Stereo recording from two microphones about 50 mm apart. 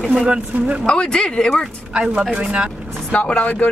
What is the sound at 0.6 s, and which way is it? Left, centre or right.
Speech, right.